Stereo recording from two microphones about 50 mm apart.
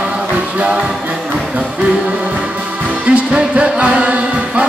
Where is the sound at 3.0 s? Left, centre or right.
Right.